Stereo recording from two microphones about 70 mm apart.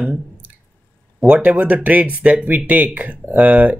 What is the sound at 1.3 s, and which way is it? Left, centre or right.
Speech, right.